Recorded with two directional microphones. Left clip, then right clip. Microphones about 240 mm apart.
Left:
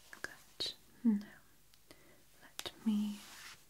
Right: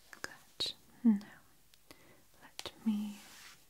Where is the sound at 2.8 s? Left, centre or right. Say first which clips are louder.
Even; centre.